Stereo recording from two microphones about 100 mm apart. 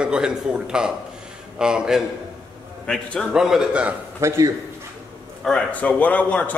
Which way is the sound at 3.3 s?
5° right (ahead or behind).